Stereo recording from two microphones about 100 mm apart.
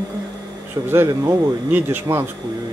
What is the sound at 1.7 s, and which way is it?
Speech, 20° right (ahead or behind).